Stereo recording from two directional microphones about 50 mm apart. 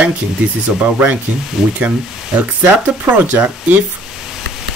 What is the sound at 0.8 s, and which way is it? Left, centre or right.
Speech, right.